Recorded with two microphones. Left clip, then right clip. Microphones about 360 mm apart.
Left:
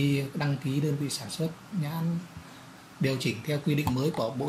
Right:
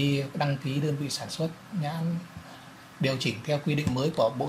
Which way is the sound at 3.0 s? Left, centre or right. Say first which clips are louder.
Right 1 dB; centre.